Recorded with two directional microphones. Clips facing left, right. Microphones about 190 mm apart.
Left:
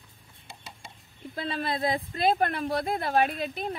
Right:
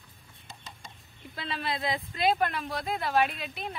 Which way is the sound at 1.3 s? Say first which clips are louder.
Left 4 dB; 45° left (ahead or behind).